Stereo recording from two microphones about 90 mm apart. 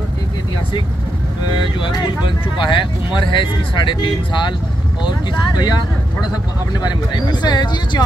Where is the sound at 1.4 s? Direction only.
55° left (ahead or behind).